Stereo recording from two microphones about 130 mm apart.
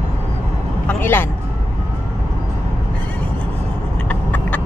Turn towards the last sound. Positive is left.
turn(degrees=10)  # may be behind; listen again after turning